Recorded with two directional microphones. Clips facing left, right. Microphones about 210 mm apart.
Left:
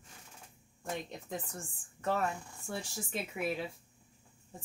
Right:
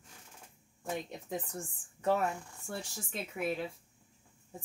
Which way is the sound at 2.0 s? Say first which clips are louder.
Right 3 dB; 15° right (ahead or behind).